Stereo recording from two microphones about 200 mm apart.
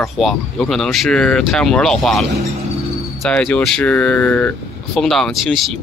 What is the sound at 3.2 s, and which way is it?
Speech, 5° left (ahead or behind).